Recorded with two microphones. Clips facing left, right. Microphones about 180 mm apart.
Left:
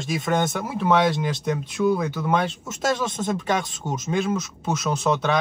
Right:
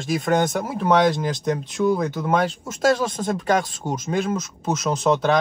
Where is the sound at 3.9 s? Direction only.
15° right (ahead or behind).